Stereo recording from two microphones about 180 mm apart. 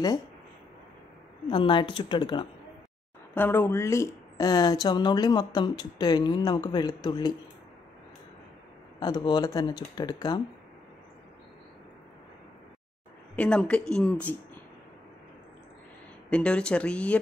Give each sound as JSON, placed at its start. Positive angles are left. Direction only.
{"t": 1.5, "sound": "speech", "side_deg": 25}
{"t": 3.3, "sound": "speech", "side_deg": 10}
{"t": 9.0, "sound": "speech", "side_deg": 25}
{"t": 13.4, "sound": "a woman's voice", "side_deg": 5}
{"t": 16.3, "sound": "speech", "side_deg": 5}